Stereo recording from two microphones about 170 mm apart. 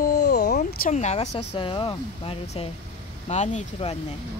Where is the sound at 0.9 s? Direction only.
40° left (ahead or behind).